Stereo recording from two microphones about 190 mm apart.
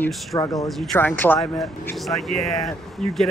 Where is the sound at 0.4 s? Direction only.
20° left (ahead or behind).